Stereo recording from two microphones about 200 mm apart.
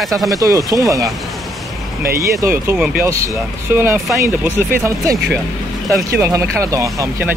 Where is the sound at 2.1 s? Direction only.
15° right (ahead or behind).